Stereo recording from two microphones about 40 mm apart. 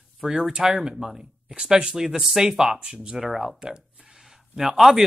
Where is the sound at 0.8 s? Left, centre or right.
Centre.